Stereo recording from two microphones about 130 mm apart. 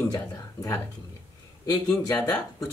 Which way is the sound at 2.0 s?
30° left (ahead or behind).